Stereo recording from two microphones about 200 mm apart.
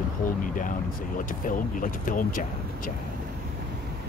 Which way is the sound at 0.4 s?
40° left (ahead or behind).